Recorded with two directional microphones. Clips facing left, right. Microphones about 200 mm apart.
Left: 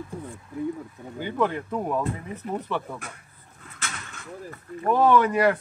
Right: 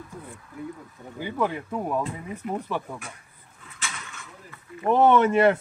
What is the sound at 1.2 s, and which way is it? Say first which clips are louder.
Speech: left 2 dB; 5° right (ahead or behind).